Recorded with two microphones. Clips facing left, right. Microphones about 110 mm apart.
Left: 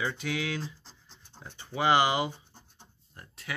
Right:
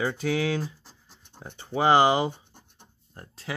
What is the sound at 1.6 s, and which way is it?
Speech, 40° right (ahead or behind).